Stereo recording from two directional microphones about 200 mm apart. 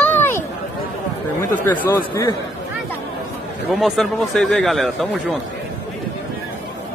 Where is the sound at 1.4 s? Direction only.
10° left (ahead or behind).